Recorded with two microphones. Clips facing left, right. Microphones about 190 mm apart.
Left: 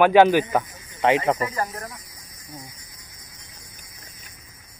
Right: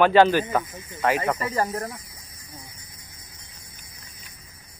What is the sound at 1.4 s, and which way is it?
Speech, 30° right (ahead or behind).